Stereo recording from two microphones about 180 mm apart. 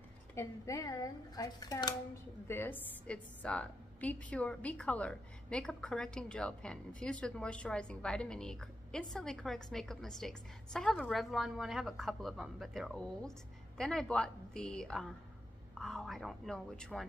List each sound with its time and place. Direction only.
0.3 s speech: 15° left (ahead or behind)
2.4 s a woman's voice: 10° left (ahead or behind)